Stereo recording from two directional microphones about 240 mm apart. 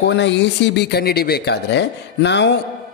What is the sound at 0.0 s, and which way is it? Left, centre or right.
A man's voice, left.